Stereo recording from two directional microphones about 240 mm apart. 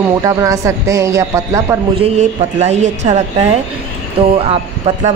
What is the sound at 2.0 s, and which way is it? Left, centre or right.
Speech, right.